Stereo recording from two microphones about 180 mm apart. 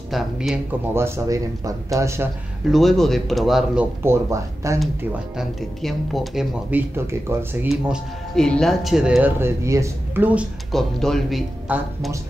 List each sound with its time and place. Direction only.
0.1 s speech: centre (ahead or behind)
0.9 s speech: 15° right (ahead or behind)
2.7 s speech: centre (ahead or behind)
4.0 s speech: 15° right (ahead or behind)
5.4 s speech: centre (ahead or behind)
10.7 s speech: centre (ahead or behind)